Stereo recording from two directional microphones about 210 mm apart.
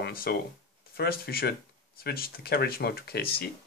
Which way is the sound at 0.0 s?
45° left (ahead or behind).